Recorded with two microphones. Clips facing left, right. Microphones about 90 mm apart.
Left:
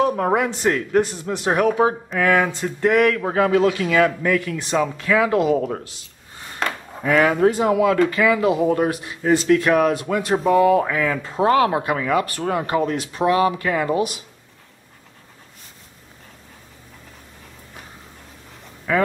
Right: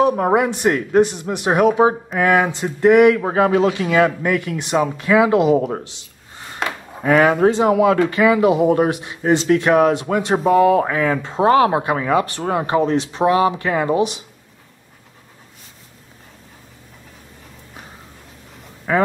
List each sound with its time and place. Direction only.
0.0 s speech: 15° right (ahead or behind)
18.9 s speech: 35° right (ahead or behind)